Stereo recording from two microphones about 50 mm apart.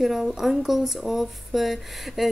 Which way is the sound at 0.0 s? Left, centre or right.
Centre.